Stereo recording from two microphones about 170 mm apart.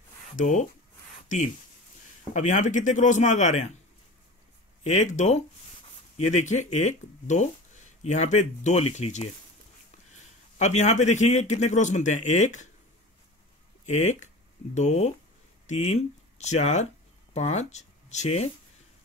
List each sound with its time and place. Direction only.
0.4 s speech: 45° left (ahead or behind)
2.3 s speech: 45° left (ahead or behind)
4.8 s speech: 45° left (ahead or behind)
10.6 s speech: 45° left (ahead or behind)
13.8 s speech: 45° left (ahead or behind)